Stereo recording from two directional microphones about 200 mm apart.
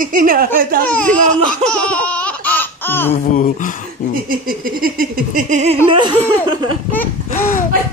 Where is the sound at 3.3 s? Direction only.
40° left (ahead or behind).